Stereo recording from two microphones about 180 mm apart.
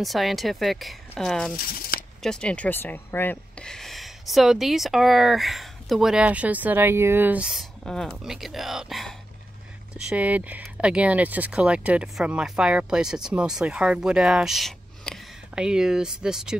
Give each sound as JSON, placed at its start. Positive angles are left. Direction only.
{"t": 0.0, "sound": "speech", "side_deg": 0}
{"t": 1.7, "sound": "a sound", "side_deg": 55}
{"t": 2.2, "sound": "speech", "side_deg": 5}